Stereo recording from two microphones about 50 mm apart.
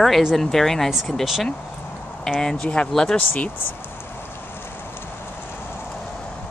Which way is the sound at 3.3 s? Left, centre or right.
Left.